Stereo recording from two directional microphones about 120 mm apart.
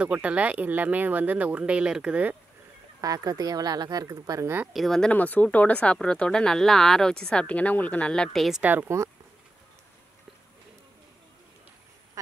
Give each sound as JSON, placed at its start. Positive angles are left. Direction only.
{"t": 0.0, "sound": "speech", "side_deg": -10}
{"t": 3.0, "sound": "speech", "side_deg": -30}
{"t": 4.7, "sound": "speech", "side_deg": 5}
{"t": 8.6, "sound": "speech", "side_deg": -20}